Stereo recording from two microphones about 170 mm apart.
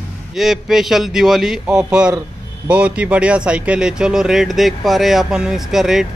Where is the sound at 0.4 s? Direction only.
Centre (ahead or behind).